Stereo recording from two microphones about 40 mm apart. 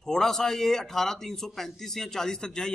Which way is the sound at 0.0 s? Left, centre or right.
Centre.